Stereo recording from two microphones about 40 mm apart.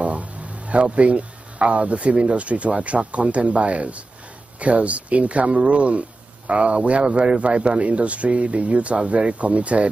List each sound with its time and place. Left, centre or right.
0.0 s speech: right